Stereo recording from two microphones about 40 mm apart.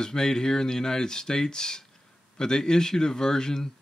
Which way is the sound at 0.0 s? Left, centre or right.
Centre.